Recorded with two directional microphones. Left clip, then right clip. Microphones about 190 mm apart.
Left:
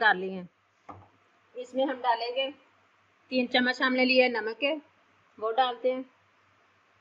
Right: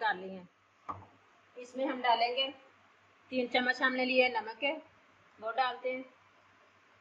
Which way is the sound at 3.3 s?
55° left (ahead or behind).